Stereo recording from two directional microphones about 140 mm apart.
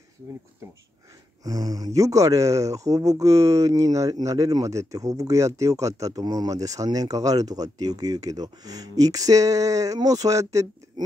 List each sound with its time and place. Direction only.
1.4 s speech: 25° right (ahead or behind)